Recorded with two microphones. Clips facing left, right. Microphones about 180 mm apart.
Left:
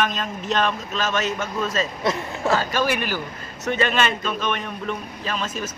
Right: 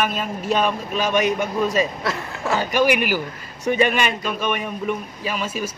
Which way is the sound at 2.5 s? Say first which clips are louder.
Right 3 dB; 15° right (ahead or behind).